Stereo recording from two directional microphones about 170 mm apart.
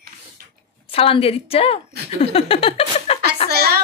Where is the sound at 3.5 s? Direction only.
70° right (ahead or behind).